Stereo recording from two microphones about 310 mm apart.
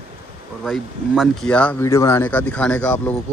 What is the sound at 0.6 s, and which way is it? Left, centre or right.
Speech, centre.